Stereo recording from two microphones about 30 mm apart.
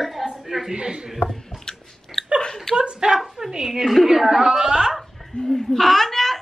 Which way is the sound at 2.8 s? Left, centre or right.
Right.